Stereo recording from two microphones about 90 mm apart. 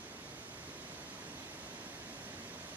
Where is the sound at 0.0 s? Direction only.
20° right (ahead or behind).